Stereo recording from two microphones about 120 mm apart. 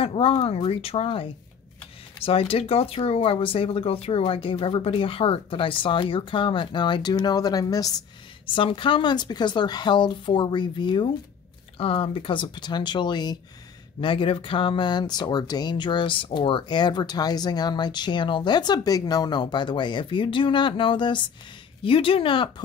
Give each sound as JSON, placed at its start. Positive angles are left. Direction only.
{"t": 0.0, "sound": "speech", "side_deg": 50}
{"t": 8.5, "sound": "speech", "side_deg": 45}
{"t": 11.8, "sound": "speech", "side_deg": 50}